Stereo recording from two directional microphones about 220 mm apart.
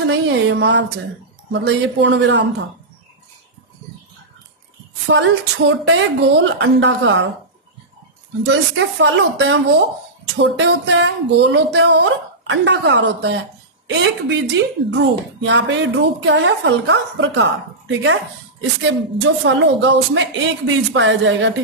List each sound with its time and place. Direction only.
0.0 s speech: 55° right (ahead or behind)
5.1 s speech: 55° right (ahead or behind)
8.4 s speech: 55° right (ahead or behind)